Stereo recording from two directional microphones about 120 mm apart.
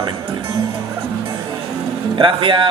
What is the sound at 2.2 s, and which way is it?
Speech, 45° right (ahead or behind).